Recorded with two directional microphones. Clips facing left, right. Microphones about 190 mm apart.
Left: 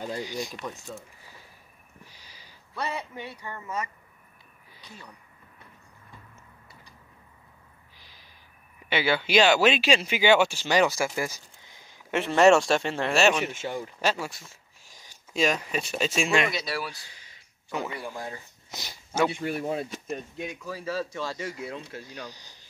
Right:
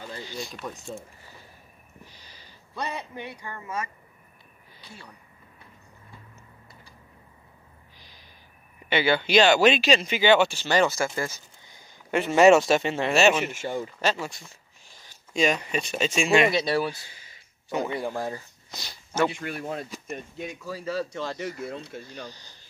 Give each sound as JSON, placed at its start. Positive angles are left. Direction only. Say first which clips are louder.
{"t": 0.2, "sound": "speech", "louder": "left 3 dB", "side_deg": 15}
{"t": 2.0, "sound": "a sound", "louder": "right 2 dB", "side_deg": 10}
{"t": 2.7, "sound": "speech", "louder": "even", "side_deg": -15}
{"t": 4.8, "sound": "speech", "louder": "even", "side_deg": -10}
{"t": 8.8, "sound": "speech", "louder": "right 2 dB", "side_deg": 5}
{"t": 11.7, "sound": "speech", "louder": "right 2 dB", "side_deg": 0}
{"t": 13.7, "sound": "speech", "louder": "right 1 dB", "side_deg": 10}
{"t": 16.4, "sound": "speech", "louder": "right 7 dB", "side_deg": -25}
{"t": 16.9, "sound": "a sound", "louder": "right 2 dB", "side_deg": -5}
{"t": 18.7, "sound": "speech", "louder": "left 1 dB", "side_deg": 20}